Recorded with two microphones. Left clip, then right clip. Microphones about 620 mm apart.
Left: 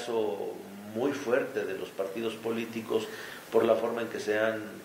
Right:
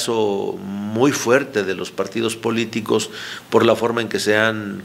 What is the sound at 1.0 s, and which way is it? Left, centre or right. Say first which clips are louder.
Speech: right 12 dB; right.